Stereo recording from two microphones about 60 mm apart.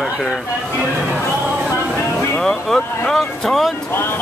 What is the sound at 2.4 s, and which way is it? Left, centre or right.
Speech, centre.